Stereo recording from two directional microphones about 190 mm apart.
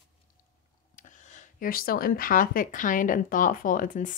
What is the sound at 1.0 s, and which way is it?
Speech, 40° left (ahead or behind).